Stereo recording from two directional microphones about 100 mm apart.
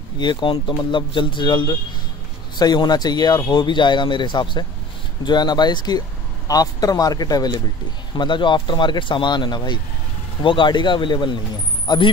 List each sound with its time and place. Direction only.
0.2 s speech: 50° left (ahead or behind)